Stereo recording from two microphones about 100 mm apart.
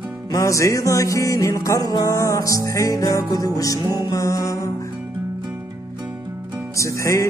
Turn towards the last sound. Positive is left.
turn(degrees=30)  # may be behind; listen again after turning